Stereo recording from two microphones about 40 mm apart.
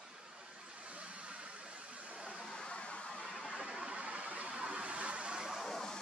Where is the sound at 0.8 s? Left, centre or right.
Right.